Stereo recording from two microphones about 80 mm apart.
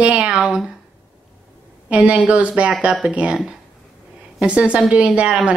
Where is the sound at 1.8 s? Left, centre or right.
Centre.